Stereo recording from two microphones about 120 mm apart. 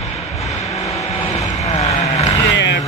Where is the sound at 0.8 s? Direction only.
60° left (ahead or behind).